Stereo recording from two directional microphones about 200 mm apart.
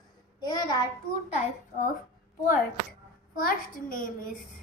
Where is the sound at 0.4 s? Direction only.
20° left (ahead or behind).